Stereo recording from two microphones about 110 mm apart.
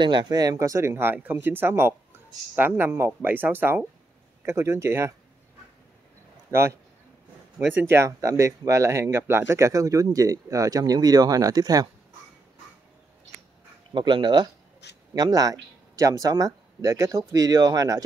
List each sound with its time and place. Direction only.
0.0 s speech: 45° right (ahead or behind); by 5.1 s 25° right (ahead or behind)
6.5 s speech: 25° right (ahead or behind)
13.9 s speech: 45° right (ahead or behind)